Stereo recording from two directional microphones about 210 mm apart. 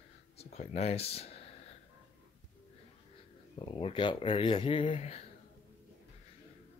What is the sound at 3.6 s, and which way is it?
Speech, 25° left (ahead or behind).